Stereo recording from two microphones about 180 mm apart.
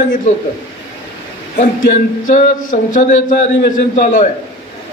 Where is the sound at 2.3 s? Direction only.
45° left (ahead or behind).